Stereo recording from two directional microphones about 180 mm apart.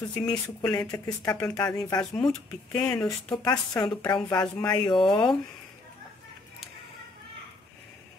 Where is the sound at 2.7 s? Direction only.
10° left (ahead or behind).